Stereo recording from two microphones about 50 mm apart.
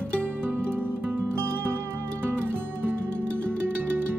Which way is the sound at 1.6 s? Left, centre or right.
Right.